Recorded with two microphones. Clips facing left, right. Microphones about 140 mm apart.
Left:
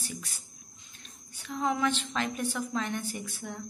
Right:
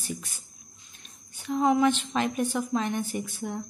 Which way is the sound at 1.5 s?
20° right (ahead or behind).